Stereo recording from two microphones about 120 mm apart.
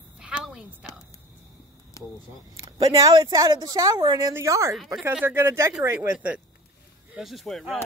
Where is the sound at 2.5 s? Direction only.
25° right (ahead or behind).